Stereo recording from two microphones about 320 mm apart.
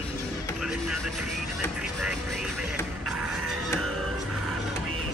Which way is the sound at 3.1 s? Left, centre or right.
Right.